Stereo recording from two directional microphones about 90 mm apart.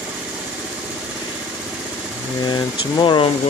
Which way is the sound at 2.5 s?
60° left (ahead or behind).